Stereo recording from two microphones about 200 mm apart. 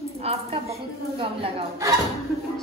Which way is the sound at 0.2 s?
30° right (ahead or behind).